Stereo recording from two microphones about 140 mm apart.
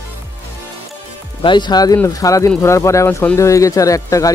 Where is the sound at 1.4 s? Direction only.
35° left (ahead or behind).